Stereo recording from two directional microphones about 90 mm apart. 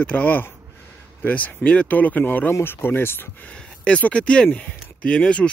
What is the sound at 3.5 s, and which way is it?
Speech, 10° left (ahead or behind).